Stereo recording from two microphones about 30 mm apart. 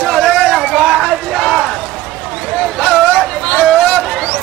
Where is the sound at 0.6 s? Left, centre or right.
Centre.